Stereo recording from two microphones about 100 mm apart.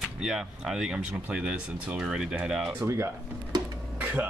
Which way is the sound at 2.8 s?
30° right (ahead or behind).